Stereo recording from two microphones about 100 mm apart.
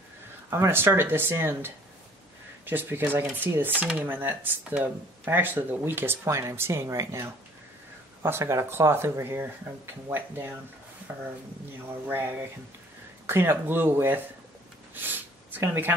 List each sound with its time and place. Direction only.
0.5 s speech: 25° right (ahead or behind)
13.3 s speech: 20° right (ahead or behind)
15.0 s a sound: 20° right (ahead or behind)